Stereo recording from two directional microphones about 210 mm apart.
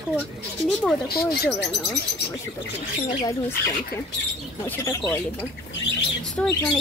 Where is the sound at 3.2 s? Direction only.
15° left (ahead or behind).